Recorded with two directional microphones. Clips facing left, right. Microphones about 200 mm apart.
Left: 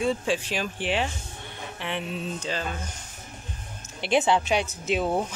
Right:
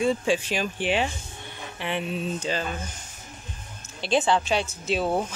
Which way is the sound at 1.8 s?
5° right (ahead or behind).